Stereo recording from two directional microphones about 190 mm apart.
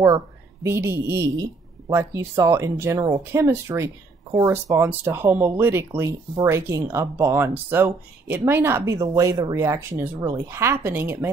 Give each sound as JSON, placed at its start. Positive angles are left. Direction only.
{"t": 0.7, "sound": "speech", "side_deg": -15}